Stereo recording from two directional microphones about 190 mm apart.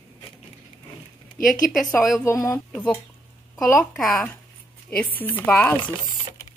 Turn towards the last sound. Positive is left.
turn(degrees=10)  # may be behind; listen again after turning